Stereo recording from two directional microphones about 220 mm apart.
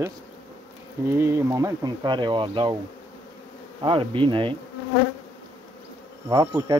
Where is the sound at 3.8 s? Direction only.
25° right (ahead or behind).